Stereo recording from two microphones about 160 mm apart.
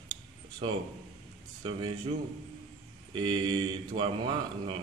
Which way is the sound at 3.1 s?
30° right (ahead or behind).